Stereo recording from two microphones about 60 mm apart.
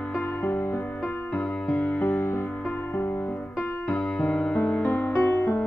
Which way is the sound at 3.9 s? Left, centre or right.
Centre.